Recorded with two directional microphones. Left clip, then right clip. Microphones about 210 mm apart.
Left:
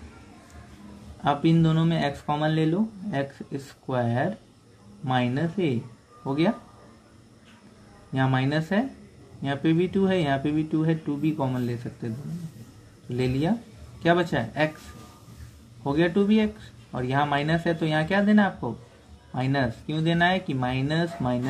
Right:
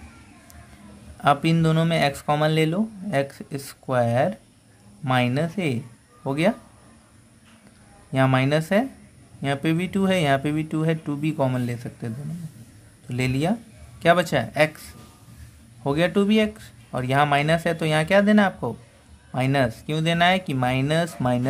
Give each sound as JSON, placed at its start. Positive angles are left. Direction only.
{"t": 1.2, "sound": "speech", "side_deg": -40}
{"t": 8.1, "sound": "speech", "side_deg": -40}
{"t": 13.1, "sound": "speech", "side_deg": -40}
{"t": 15.8, "sound": "speech", "side_deg": -40}